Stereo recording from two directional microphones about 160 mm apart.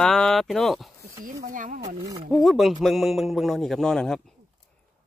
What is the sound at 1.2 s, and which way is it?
Speech, 55° right (ahead or behind).